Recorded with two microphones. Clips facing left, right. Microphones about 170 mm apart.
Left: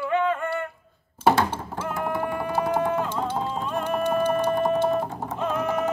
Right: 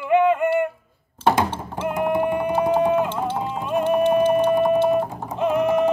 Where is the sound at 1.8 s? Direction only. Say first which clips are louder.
Right 7 dB; 20° right (ahead or behind).